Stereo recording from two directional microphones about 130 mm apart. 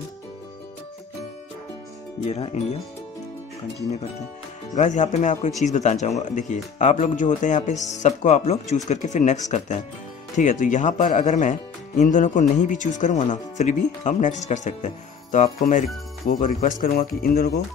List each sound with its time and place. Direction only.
2.2 s speech: 55° left (ahead or behind)
4.7 s speech: 65° left (ahead or behind)
16.3 s speech: 90° left